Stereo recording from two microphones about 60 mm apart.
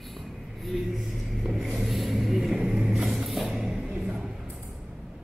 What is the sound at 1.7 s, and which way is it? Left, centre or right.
Vehicle, centre.